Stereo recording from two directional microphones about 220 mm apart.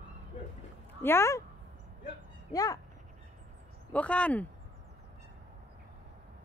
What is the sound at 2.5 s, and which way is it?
Speech, 15° left (ahead or behind).